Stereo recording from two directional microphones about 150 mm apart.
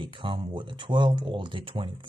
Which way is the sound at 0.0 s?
35° right (ahead or behind).